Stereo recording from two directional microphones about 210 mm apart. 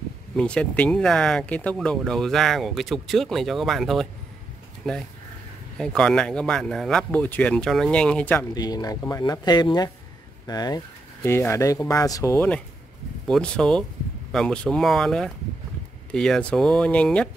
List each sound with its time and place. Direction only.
0.4 s speech: 5° left (ahead or behind)
8.5 s speech: 20° left (ahead or behind)